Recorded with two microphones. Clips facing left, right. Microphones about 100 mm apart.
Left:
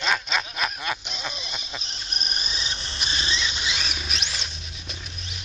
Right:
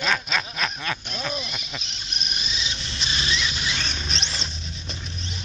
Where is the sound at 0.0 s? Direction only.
5° left (ahead or behind).